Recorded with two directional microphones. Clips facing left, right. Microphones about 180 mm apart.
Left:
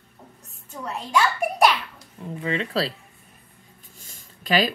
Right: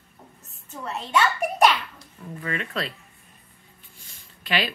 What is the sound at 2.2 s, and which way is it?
Speech, 20° left (ahead or behind).